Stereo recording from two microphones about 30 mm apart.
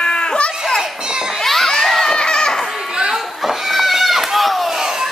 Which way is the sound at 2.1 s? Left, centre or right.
Left.